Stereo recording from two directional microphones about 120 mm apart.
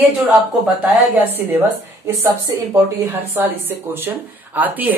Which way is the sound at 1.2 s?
15° right (ahead or behind).